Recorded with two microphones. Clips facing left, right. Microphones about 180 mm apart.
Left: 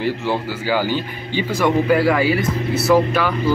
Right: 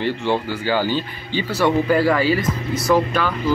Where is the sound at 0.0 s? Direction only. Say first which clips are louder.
Even; 5° left (ahead or behind).